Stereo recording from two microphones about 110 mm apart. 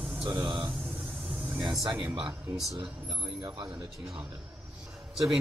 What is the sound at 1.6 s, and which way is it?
Speech, 40° right (ahead or behind).